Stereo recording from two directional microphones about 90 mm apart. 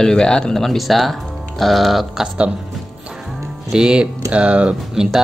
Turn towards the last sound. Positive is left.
turn(degrees=-10)  # may be behind; listen again after turning